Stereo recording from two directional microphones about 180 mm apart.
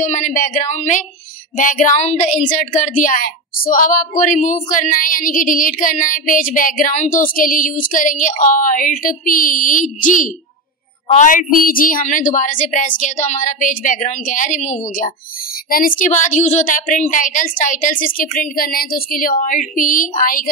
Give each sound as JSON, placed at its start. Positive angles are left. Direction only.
{"t": 0.0, "sound": "a woman's voice", "side_deg": 45}